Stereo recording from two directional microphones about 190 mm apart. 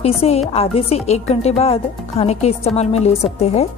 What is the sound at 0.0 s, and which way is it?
Speech, 30° left (ahead or behind).